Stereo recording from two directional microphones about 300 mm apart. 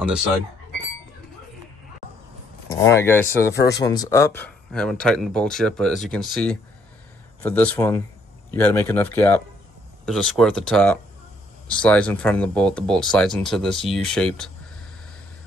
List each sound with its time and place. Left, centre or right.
2.7 s speech: centre
3.5 s speech: left
3.8 s speech: centre